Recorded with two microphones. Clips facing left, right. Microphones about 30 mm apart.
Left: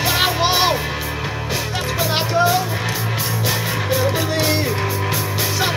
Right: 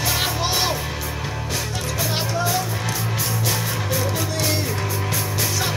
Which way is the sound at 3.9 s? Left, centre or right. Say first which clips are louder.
Left 6 dB; left.